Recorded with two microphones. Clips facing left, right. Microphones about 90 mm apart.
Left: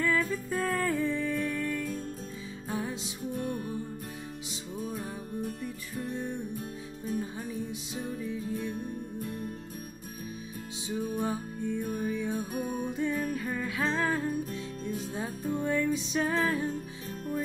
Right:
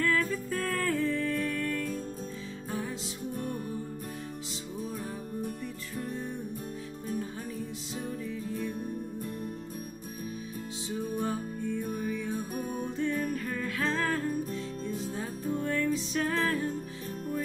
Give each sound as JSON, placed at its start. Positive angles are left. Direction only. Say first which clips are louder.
{"t": 0.0, "sound": "music", "louder": "even", "side_deg": 10}
{"t": 8.2, "sound": "music", "louder": "left 1 dB", "side_deg": 5}
{"t": 11.0, "sound": "music", "louder": "left 1 dB", "side_deg": 5}
{"t": 12.3, "sound": "music", "louder": "left 1 dB", "side_deg": 0}
{"t": 12.8, "sound": "music", "louder": "right 2 dB", "side_deg": 10}
{"t": 16.3, "sound": "music", "louder": "left 1 dB", "side_deg": 5}